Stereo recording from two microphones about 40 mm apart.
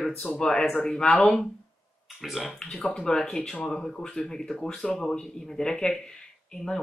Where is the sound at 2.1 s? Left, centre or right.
Centre.